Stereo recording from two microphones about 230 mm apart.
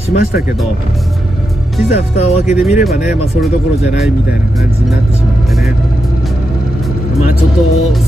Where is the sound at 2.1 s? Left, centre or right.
Left.